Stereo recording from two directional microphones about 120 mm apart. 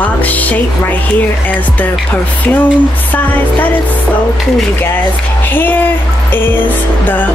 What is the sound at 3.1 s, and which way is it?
Speech, 15° left (ahead or behind).